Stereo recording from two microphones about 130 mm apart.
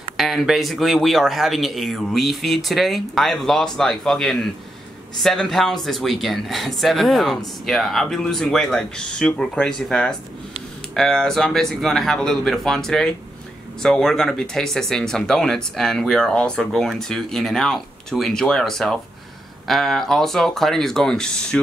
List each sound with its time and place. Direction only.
0.2 s speech: centre (ahead or behind)